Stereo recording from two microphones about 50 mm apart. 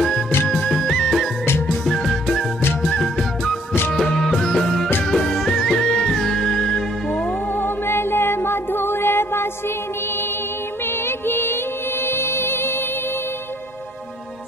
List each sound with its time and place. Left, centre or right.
0.7 s music: centre
7.1 s music: centre
7.5 s music: left
11.1 s music: left